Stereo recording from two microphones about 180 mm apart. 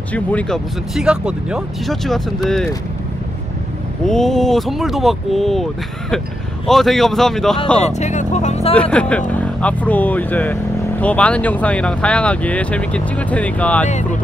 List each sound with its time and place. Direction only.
0.1 s speech: 10° left (ahead or behind)
4.0 s speech: centre (ahead or behind)
7.9 s speech: 40° left (ahead or behind)
8.9 s speech: 5° left (ahead or behind)